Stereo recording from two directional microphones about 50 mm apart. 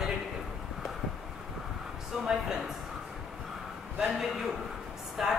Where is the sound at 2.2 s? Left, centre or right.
Centre.